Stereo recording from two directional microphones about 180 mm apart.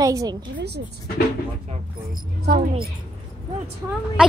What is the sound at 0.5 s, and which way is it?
Speech, 65° right (ahead or behind).